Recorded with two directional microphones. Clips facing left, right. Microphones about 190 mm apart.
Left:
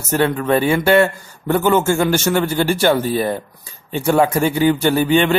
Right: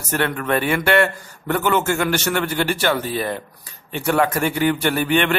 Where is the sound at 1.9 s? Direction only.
25° left (ahead or behind).